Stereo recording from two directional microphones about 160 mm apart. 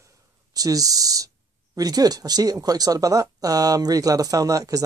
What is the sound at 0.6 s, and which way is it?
Speech, 20° right (ahead or behind).